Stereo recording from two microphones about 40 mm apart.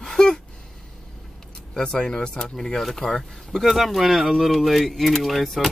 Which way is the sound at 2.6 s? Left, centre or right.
Centre.